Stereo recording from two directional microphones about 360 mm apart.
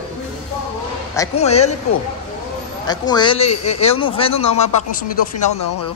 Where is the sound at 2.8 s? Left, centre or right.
Centre.